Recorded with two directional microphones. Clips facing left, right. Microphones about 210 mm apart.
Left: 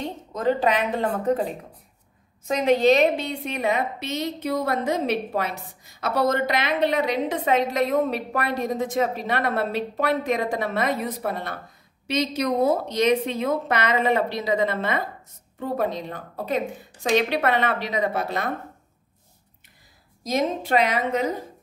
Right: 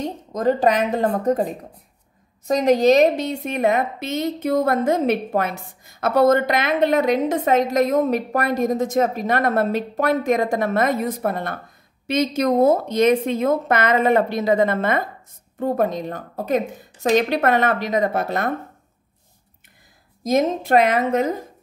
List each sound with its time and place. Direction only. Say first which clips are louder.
0.0 s a woman's voice: right 4 dB; 40° right (ahead or behind)
20.2 s a woman's voice: right 5 dB; 50° right (ahead or behind)